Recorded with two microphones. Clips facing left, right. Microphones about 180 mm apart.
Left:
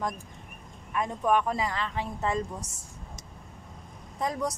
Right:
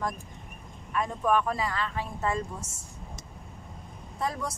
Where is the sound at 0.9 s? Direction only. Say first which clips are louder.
Even; 20° left (ahead or behind).